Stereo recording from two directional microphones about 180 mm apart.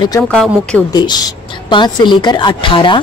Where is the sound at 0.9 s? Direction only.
25° left (ahead or behind).